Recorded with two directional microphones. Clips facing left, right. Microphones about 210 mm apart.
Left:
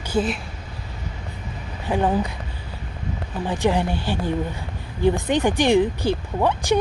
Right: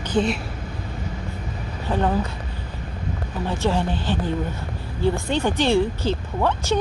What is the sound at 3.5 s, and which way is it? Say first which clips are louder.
Speech: left 2 dB; 15° left (ahead or behind).